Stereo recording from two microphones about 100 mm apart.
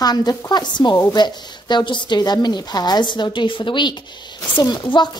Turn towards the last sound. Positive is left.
turn(degrees=50)  # may be behind; listen again after turning